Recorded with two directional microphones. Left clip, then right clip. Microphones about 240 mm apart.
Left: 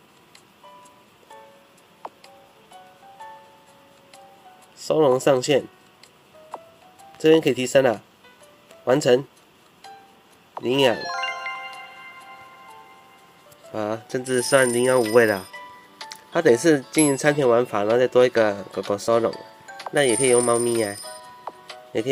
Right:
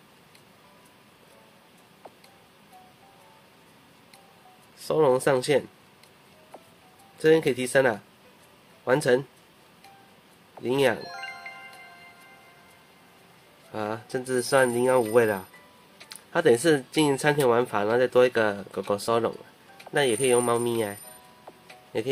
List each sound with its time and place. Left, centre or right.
4.7 s speech: centre
7.2 s speech: centre
10.6 s speech: centre
11.0 s music: centre
13.7 s speech: centre